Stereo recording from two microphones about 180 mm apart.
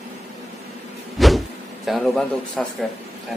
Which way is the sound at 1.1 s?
Centre (ahead or behind).